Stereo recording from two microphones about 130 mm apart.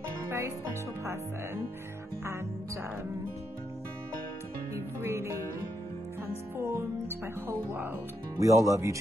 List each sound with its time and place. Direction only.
0.3 s speech: 20° right (ahead or behind)
5.0 s music: 20° right (ahead or behind)
6.6 s speech: 20° right (ahead or behind)